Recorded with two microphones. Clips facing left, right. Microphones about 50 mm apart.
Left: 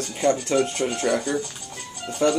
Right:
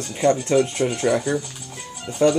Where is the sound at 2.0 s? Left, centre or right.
Centre.